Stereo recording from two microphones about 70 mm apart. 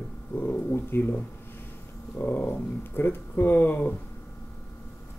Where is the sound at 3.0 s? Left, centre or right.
Left.